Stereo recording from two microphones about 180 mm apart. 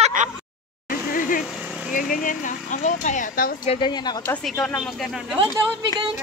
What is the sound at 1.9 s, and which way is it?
Speech, 50° left (ahead or behind).